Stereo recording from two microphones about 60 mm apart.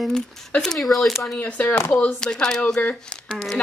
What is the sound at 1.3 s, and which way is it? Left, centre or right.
Speech, left.